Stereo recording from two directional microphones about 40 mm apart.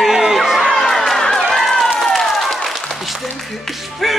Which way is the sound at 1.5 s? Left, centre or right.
Centre.